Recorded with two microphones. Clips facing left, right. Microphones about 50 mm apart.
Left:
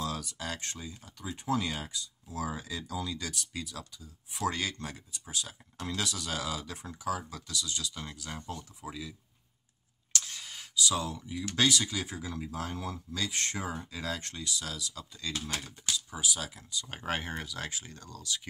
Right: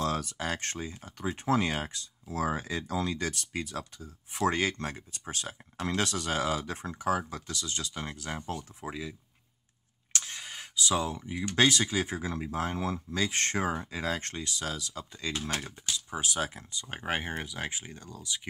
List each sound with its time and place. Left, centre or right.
0.0 s speech: right
10.1 s speech: right
13.8 s speech: right
16.8 s speech: centre